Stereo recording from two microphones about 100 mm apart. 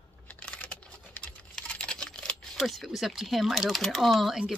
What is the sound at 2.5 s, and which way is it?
Speech, centre (ahead or behind).